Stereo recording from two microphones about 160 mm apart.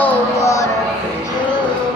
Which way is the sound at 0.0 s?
20° left (ahead or behind).